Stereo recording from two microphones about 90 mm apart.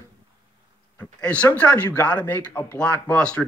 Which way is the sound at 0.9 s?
15° left (ahead or behind).